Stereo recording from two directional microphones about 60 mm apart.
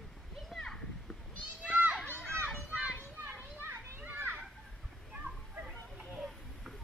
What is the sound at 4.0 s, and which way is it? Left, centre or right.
Children playing, right.